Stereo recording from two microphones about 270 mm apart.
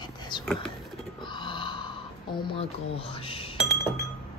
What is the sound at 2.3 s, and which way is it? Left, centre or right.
Speech, centre.